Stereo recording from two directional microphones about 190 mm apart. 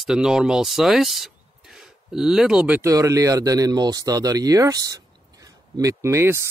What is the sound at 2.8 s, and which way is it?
Speech, 15° right (ahead or behind).